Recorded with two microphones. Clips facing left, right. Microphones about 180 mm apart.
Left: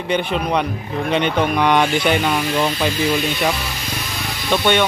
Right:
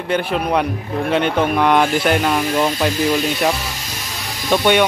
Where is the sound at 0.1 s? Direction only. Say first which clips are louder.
Right 1 dB; 5° right (ahead or behind).